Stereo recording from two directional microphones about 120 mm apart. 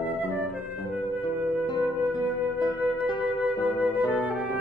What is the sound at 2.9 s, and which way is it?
Music, 40° left (ahead or behind).